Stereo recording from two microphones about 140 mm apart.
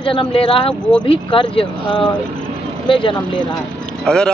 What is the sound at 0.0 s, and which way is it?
Speech, 40° left (ahead or behind).